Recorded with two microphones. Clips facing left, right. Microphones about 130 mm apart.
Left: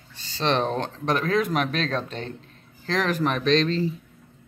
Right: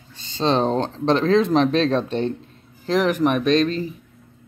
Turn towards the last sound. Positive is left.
turn(degrees=-15)  # may be behind; listen again after turning